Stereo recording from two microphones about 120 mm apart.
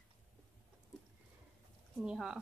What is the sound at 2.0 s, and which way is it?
Speech, 5° right (ahead or behind).